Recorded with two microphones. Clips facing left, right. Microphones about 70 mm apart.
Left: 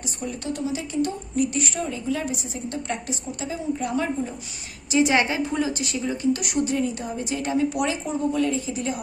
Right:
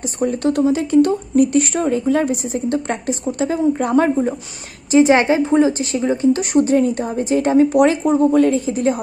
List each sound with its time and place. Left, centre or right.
0.0 s speech: right
4.9 s a woman's voice: right